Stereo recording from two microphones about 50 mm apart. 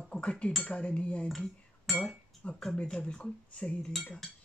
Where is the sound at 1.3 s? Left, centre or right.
Centre.